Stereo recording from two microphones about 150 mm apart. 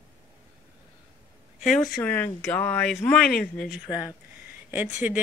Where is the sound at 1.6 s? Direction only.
60° left (ahead or behind).